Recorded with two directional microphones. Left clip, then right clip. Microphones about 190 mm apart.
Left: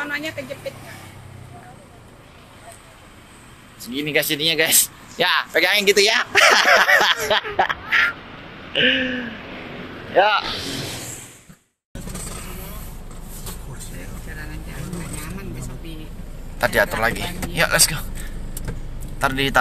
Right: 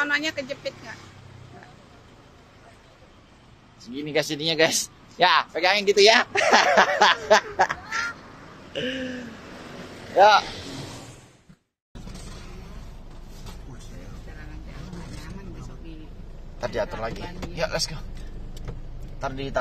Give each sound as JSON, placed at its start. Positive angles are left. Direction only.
{"t": 0.0, "sound": "speech", "side_deg": -55}
{"t": 3.9, "sound": "speech", "side_deg": -20}
{"t": 5.1, "sound": "speech", "side_deg": -10}
{"t": 10.1, "sound": "speech", "side_deg": -15}
{"t": 16.5, "sound": "speech", "side_deg": 0}
{"t": 19.1, "sound": "a man's voice", "side_deg": 5}